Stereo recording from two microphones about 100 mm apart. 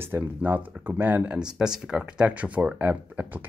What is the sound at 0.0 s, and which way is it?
Speech, 20° right (ahead or behind).